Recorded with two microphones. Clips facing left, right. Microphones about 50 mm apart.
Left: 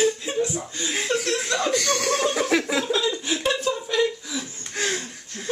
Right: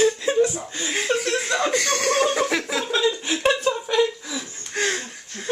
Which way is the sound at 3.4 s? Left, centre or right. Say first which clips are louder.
Right 5 dB; right.